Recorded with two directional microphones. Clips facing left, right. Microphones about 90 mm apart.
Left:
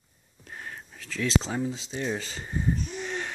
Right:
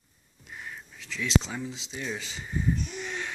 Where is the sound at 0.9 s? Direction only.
45° left (ahead or behind).